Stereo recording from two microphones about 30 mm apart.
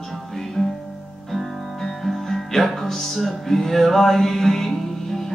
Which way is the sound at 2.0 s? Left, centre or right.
Centre.